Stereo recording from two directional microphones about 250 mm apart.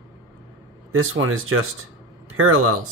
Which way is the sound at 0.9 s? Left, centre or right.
Right.